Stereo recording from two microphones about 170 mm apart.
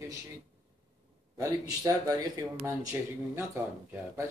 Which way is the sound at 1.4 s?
20° right (ahead or behind).